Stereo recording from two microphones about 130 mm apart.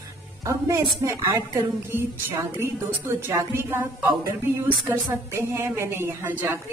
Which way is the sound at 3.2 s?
20° right (ahead or behind).